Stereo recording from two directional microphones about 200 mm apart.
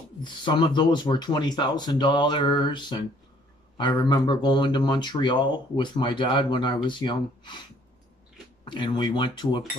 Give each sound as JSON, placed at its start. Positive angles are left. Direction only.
{"t": 0.2, "sound": "speech", "side_deg": 25}
{"t": 8.7, "sound": "speech", "side_deg": 20}